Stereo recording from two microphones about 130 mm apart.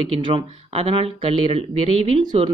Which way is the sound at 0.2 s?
40° right (ahead or behind).